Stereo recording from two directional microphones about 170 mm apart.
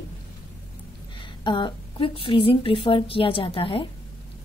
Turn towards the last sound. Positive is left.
turn(degrees=30)  # may be behind; listen again after turning